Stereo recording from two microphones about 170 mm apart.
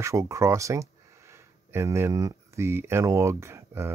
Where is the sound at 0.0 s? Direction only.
20° right (ahead or behind).